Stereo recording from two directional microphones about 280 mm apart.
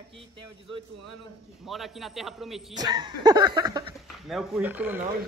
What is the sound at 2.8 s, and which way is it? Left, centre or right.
Speech, centre.